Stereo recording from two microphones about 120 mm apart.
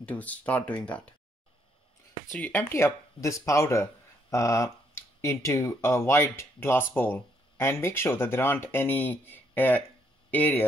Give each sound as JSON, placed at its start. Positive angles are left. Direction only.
{"t": 0.0, "sound": "speech", "side_deg": 10}
{"t": 2.3, "sound": "speech", "side_deg": 15}